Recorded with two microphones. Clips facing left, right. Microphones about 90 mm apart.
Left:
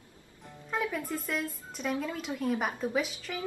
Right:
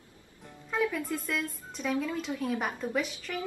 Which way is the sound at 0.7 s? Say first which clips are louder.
Right 2 dB; 5° left (ahead or behind).